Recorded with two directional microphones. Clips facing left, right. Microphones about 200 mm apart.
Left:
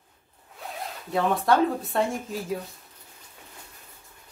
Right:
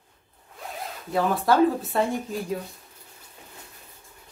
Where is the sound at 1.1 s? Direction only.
Centre (ahead or behind).